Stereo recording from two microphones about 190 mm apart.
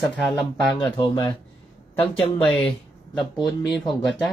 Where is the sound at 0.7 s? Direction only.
20° left (ahead or behind).